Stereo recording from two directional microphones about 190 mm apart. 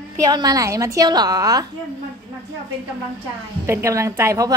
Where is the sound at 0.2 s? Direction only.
20° right (ahead or behind).